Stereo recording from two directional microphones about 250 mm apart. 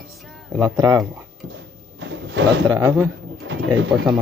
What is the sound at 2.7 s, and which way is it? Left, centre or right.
Speech, centre.